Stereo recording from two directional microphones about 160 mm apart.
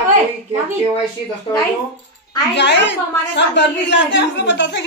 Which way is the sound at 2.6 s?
90° left.